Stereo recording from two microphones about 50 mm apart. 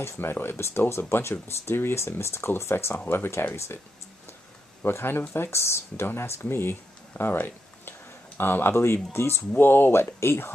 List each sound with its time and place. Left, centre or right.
0.0 s speech: left
4.8 s speech: left
5.3 s speech: left
9.6 s speech: left